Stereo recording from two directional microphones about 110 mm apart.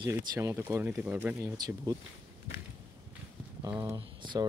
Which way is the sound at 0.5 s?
20° right (ahead or behind).